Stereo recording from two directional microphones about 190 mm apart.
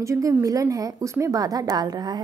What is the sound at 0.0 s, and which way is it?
A woman's voice, 15° right (ahead or behind).